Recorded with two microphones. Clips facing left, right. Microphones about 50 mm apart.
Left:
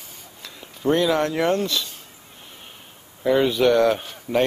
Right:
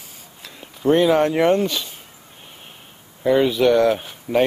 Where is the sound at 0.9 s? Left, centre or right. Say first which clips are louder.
Right 4 dB; right.